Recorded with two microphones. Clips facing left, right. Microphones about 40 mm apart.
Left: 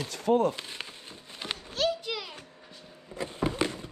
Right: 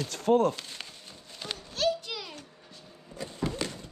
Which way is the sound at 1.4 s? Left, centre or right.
Left.